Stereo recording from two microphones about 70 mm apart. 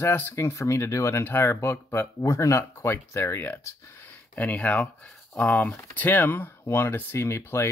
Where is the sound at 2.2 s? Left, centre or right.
Left.